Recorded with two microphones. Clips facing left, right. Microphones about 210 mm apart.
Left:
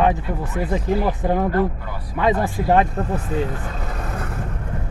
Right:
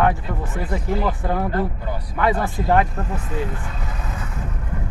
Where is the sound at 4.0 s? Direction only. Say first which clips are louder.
Left 3 dB; 60° left (ahead or behind).